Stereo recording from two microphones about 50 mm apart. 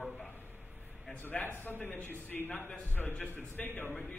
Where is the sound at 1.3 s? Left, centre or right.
Left.